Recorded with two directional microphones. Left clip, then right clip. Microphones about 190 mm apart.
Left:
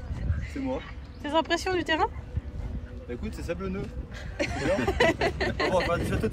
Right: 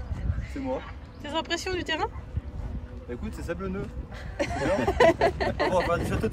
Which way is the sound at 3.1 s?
10° right (ahead or behind).